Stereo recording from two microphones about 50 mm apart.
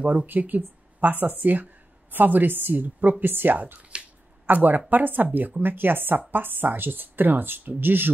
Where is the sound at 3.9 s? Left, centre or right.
Right.